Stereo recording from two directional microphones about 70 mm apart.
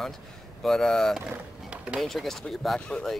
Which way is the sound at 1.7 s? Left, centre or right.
Centre.